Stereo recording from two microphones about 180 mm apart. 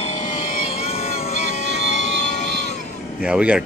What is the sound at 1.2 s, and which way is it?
Music, 35° left (ahead or behind).